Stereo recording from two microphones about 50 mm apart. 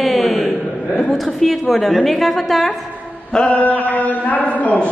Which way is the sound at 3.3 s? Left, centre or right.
Left.